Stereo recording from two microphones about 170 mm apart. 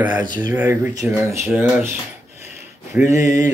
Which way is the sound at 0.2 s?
25° right (ahead or behind).